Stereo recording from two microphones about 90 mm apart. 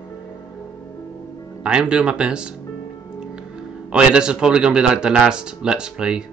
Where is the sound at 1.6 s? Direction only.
10° right (ahead or behind).